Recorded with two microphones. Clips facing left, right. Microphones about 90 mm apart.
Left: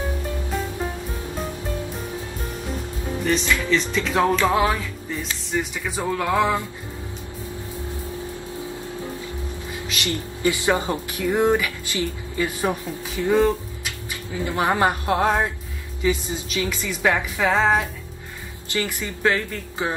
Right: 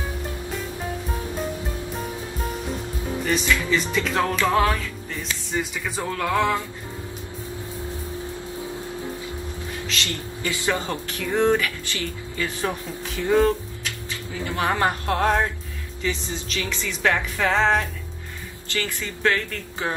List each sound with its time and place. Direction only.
3.3 s music: centre (ahead or behind)
4.2 s speech: 15° left (ahead or behind)
5.9 s speech: 10° left (ahead or behind)
9.8 s speech: 15° left (ahead or behind)
14.3 s speech: 25° left (ahead or behind); by 17.8 s 5° left (ahead or behind)
18.7 s speech: 20° left (ahead or behind)